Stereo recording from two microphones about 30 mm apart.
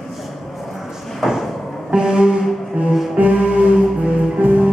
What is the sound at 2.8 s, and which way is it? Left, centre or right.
Music, right.